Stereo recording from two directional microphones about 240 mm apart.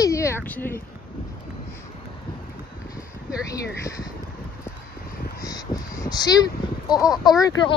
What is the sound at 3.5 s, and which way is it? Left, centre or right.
Speech, centre.